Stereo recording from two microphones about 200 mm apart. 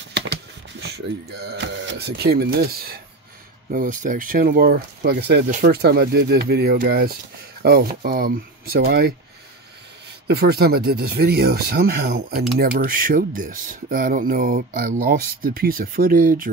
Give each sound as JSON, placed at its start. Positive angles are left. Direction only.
{"t": 0.1, "sound": "speech", "side_deg": -60}
{"t": 10.2, "sound": "speech", "side_deg": -55}